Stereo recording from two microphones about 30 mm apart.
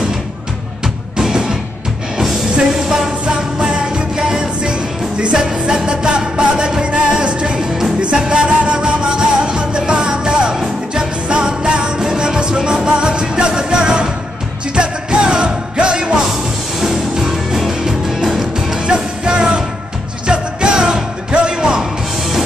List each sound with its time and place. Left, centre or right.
3.3 s music: right
10.5 s music: centre
11.3 s music: right
16.8 s music: centre
18.9 s music: right